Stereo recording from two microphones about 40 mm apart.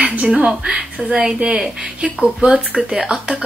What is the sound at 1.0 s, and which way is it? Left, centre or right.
Speech, centre.